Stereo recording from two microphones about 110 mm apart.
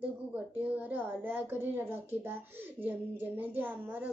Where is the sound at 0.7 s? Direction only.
15° right (ahead or behind).